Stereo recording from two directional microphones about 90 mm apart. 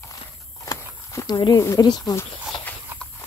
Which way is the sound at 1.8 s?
45° left (ahead or behind).